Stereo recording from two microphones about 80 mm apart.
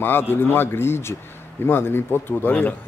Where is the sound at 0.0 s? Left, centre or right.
Left.